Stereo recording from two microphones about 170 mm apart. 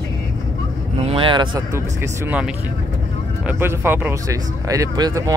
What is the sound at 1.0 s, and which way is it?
Speech, 35° right (ahead or behind).